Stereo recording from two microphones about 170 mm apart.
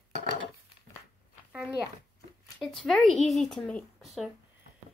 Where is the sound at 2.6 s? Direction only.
Centre (ahead or behind).